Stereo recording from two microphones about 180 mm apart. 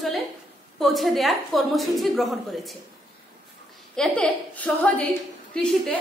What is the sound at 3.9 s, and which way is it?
A woman's voice, 5° left (ahead or behind).